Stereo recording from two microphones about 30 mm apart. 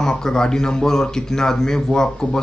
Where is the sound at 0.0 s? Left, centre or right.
Centre.